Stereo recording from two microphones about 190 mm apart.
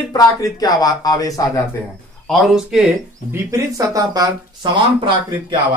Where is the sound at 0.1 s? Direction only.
20° left (ahead or behind).